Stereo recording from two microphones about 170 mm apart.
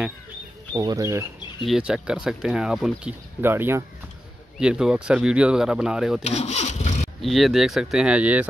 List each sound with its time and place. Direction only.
0.7 s speech: 20° right (ahead or behind)
1.7 s speech: 5° right (ahead or behind)
6.2 s speech: 40° left (ahead or behind)
7.2 s speech: centre (ahead or behind)